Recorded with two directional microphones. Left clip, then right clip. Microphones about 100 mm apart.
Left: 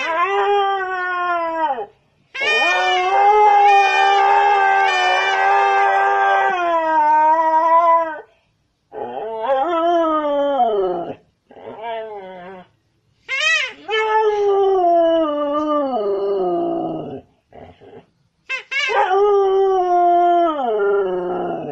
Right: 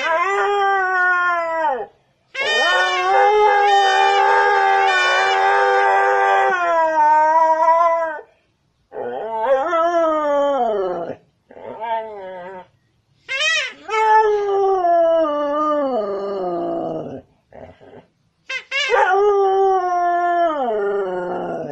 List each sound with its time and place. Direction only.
0.1 s cat: 25° right (ahead or behind)
2.3 s cat: 60° right (ahead or behind)
3.6 s howl: 50° right (ahead or behind)
7.2 s cat: 45° right (ahead or behind)
9.1 s dog: 40° right (ahead or behind)
9.8 s dog: 45° right (ahead or behind)
11.6 s wail: 30° right (ahead or behind)
13.3 s babbling: 50° right (ahead or behind)
13.7 s baby cry: 35° right (ahead or behind)
14.2 s cat: centre (ahead or behind)
14.8 s a sound: 45° right (ahead or behind)
18.5 s dog: 60° right (ahead or behind)
18.9 s dog: 40° right (ahead or behind)